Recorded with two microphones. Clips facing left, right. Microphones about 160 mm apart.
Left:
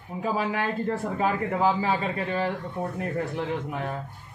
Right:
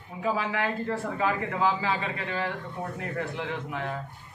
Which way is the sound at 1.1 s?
35° left (ahead or behind).